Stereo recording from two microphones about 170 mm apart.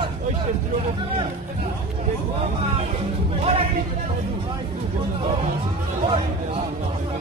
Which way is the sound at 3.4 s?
35° right (ahead or behind).